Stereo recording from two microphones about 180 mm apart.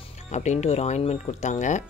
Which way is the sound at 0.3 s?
40° left (ahead or behind).